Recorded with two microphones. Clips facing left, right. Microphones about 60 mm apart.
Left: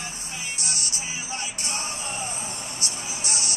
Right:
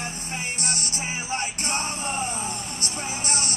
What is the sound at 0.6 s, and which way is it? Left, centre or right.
Music, right.